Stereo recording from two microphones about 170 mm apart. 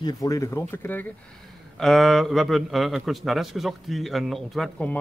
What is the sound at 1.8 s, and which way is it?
A man's voice, centre (ahead or behind).